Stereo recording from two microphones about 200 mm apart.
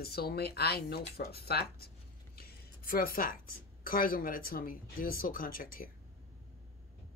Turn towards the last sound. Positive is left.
turn(degrees=45)  # may be behind; listen again after turning